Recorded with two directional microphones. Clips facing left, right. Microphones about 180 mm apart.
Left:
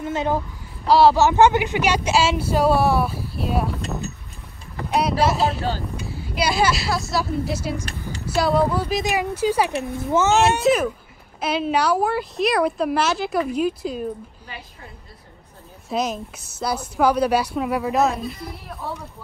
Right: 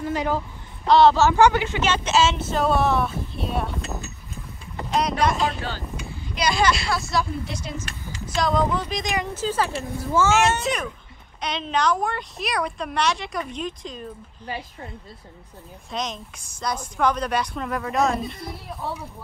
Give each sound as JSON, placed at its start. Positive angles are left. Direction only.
{"t": 0.0, "sound": "a sound", "side_deg": 20}
{"t": 0.8, "sound": "speech", "side_deg": 10}
{"t": 4.8, "sound": "boat", "side_deg": 10}
{"t": 6.0, "sound": "a woman's voice", "side_deg": 5}
{"t": 10.6, "sound": "a woman's voice", "side_deg": 5}
{"t": 15.9, "sound": "speech", "side_deg": 5}